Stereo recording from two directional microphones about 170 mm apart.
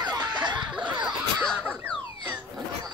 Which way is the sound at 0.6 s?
5° right (ahead or behind).